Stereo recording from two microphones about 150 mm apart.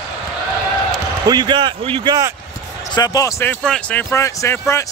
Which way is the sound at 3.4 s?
10° left (ahead or behind).